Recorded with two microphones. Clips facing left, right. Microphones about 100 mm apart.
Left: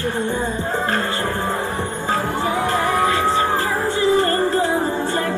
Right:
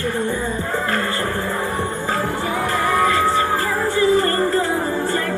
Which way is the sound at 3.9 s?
25° left (ahead or behind).